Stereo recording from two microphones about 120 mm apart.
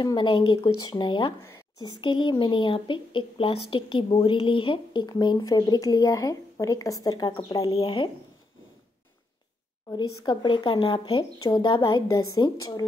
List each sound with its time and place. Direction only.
0.0 s a woman's voice: 40° left (ahead or behind)
9.9 s a woman's voice: 40° left (ahead or behind)